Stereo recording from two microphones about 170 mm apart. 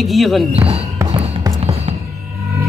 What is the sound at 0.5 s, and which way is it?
Speech, 35° right (ahead or behind).